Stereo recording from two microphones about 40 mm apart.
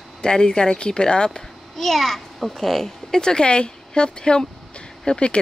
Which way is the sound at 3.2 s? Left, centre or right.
Centre.